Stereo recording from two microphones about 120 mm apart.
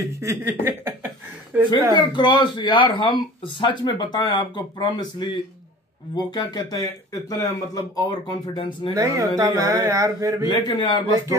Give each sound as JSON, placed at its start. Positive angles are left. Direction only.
{"t": 0.2, "sound": "speech", "side_deg": -20}
{"t": 2.0, "sound": "speech", "side_deg": 40}
{"t": 8.5, "sound": "speech", "side_deg": 45}
{"t": 8.9, "sound": "speech", "side_deg": -25}
{"t": 10.5, "sound": "speech", "side_deg": 40}